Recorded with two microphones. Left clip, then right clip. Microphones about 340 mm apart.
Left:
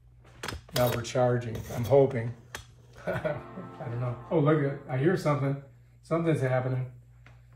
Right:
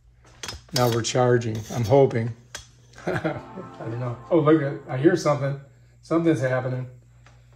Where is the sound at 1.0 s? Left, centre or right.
Right.